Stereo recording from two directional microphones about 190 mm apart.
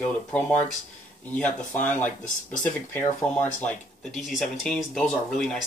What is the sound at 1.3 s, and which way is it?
Speech, 10° left (ahead or behind).